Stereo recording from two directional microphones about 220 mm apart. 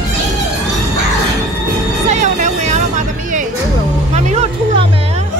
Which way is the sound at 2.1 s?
35° right (ahead or behind).